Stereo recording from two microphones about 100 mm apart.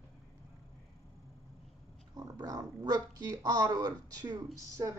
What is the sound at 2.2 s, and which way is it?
Speech, 40° right (ahead or behind).